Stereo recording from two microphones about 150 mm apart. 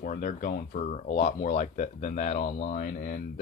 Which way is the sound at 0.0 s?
60° left (ahead or behind).